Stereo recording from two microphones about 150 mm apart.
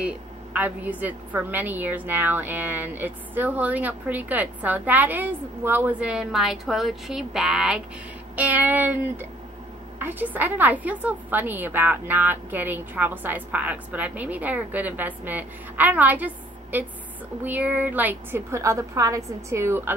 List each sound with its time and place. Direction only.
0.0 s a woman's voice: 10° right (ahead or behind)